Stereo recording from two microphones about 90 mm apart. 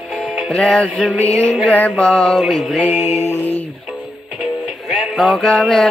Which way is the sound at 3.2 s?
25° left (ahead or behind).